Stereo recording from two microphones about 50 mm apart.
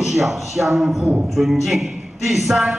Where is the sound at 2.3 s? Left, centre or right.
Centre.